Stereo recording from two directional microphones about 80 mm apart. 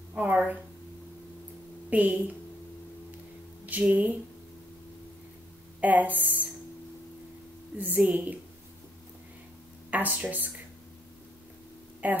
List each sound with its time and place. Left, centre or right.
0.1 s a woman's voice: centre
1.9 s a woman's voice: right
3.6 s speech: centre
5.8 s a woman's voice: right
8.0 s a woman's voice: centre
9.8 s a woman's voice: right
12.0 s a woman's voice: centre